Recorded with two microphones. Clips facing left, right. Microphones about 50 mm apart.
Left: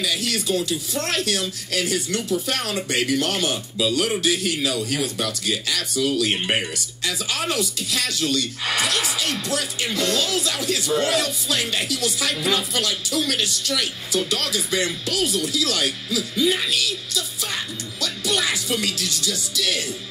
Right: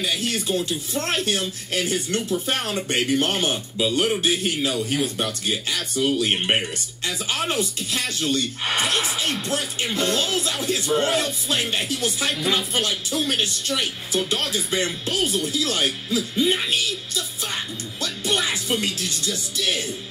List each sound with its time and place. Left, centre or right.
0.3 s speech: right
18.0 s music: right
19.2 s speech: right